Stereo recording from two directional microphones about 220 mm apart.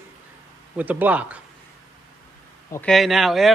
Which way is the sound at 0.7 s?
10° right (ahead or behind).